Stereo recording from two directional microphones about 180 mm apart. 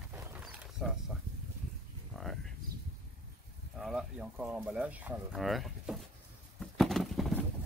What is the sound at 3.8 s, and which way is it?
Speech, 5° right (ahead or behind).